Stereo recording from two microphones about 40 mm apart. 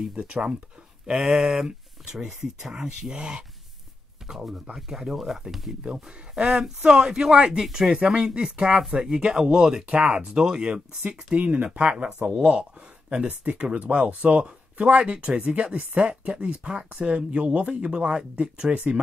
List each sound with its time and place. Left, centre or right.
0.1 s speech: right; by 5.8 s centre
5.9 s speech: right
7.6 s speech: centre
7.9 s speech: right
9.8 s speech: right
11.1 s speech: right